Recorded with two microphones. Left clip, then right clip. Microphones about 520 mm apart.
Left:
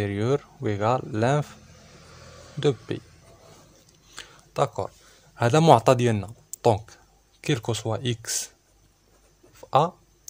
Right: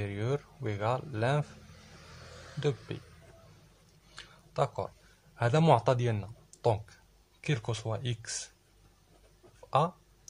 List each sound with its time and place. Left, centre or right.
0.0 s speech: right
2.9 s speech: right
4.1 s a sound: right
7.4 s speech: right
9.7 s speech: right